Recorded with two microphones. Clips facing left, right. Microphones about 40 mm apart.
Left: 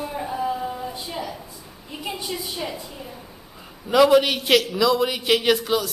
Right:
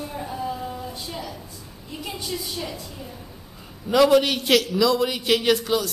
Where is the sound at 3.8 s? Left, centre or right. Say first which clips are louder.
Left 1 dB; centre.